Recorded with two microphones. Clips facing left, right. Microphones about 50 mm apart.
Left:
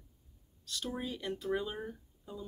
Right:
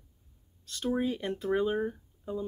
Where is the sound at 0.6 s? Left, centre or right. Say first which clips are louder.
Right 9 dB; right.